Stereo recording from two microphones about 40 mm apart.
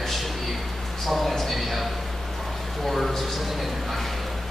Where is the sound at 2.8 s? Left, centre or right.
Centre.